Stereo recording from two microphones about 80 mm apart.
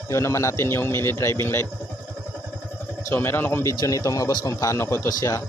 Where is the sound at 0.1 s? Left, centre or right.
Left.